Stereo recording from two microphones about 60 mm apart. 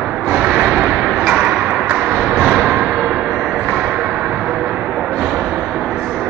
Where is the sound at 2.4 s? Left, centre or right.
Centre.